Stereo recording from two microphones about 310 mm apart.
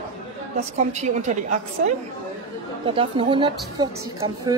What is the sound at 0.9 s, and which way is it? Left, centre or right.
Speech, right.